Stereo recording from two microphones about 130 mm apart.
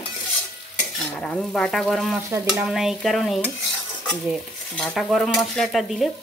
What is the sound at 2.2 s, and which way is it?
Stir, 20° right (ahead or behind).